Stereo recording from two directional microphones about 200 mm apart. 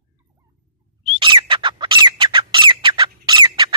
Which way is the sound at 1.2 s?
25° right (ahead or behind).